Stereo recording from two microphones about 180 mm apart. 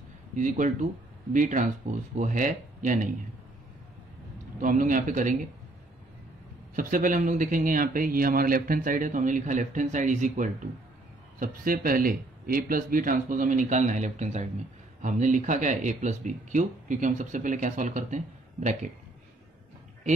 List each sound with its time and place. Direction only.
0.4 s speech: 45° right (ahead or behind)
4.6 s speech: 45° right (ahead or behind)
6.7 s speech: 50° right (ahead or behind)